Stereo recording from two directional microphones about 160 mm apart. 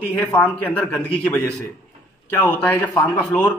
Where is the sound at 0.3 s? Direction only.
10° left (ahead or behind).